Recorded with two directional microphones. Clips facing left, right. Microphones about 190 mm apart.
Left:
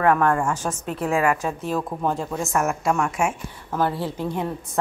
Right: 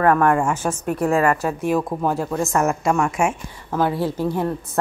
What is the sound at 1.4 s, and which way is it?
Speech, 10° right (ahead or behind).